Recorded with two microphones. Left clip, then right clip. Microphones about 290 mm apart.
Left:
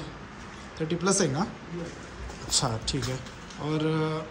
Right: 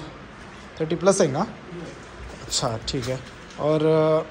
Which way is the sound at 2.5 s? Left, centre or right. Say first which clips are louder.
Right 3 dB; centre.